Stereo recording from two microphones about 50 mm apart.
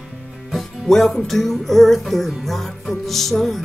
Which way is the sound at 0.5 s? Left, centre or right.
Centre.